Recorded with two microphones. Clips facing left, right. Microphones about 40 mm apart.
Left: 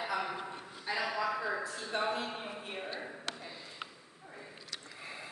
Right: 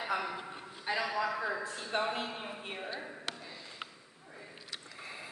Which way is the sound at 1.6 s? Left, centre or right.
Right.